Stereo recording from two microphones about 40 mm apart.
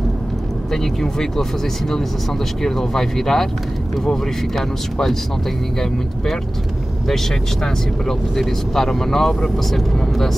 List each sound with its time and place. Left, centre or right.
0.7 s speech: centre
2.6 s speech: centre
8.4 s speech: centre